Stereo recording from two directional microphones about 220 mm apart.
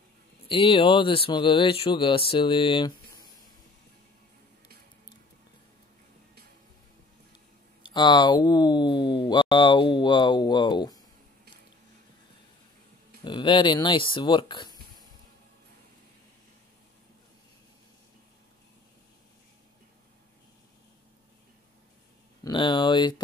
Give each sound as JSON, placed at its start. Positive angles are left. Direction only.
{"t": 0.5, "sound": "speech", "side_deg": 25}
{"t": 7.8, "sound": "speech", "side_deg": 20}
{"t": 13.2, "sound": "speech", "side_deg": 20}
{"t": 22.4, "sound": "speech", "side_deg": 20}